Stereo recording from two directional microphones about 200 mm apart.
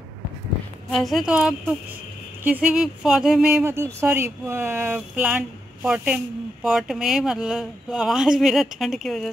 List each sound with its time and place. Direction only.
0.9 s speech: centre (ahead or behind)